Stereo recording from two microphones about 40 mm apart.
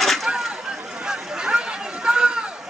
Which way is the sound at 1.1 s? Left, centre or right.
Right.